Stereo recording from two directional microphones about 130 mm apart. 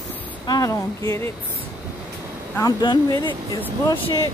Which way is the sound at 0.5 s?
25° left (ahead or behind).